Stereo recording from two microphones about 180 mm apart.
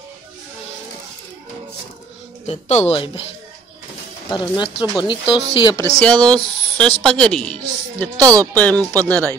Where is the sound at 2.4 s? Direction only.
35° left (ahead or behind).